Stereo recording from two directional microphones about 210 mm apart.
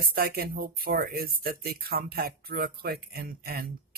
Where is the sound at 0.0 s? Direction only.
45° right (ahead or behind).